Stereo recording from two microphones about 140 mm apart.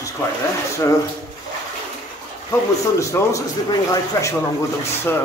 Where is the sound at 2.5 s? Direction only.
20° left (ahead or behind).